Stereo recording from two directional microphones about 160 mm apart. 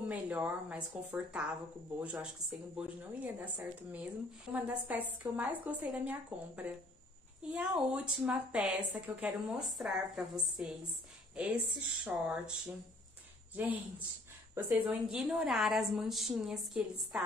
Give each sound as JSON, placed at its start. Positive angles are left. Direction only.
{"t": 0.1, "sound": "a woman's voice", "side_deg": -10}
{"t": 14.5, "sound": "a woman's voice", "side_deg": -10}